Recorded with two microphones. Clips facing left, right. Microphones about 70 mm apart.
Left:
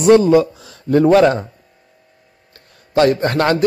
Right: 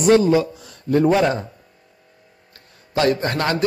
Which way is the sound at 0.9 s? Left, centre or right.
Left.